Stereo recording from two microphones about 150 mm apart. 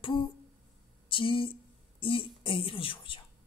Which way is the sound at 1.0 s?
35° left (ahead or behind).